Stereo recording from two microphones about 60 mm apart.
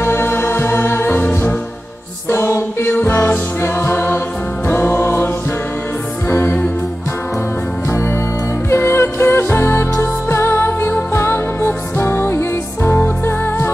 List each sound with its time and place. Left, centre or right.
0.0 s music: left
2.9 s music: left
8.6 s music: left